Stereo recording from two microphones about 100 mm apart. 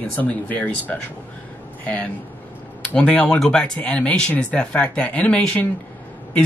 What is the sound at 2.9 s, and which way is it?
Speech, 15° left (ahead or behind).